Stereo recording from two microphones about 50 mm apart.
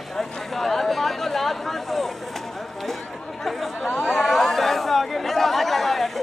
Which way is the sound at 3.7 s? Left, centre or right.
Left.